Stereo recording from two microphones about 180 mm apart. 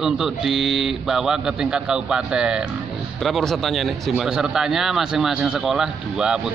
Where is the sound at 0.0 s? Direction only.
Centre (ahead or behind).